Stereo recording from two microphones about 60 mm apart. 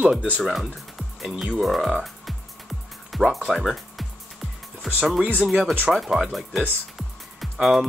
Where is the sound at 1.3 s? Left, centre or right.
Centre.